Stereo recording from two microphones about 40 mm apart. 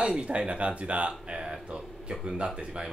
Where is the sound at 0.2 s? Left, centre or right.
Right.